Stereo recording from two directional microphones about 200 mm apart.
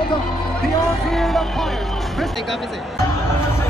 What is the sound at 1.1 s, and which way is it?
Music, centre (ahead or behind).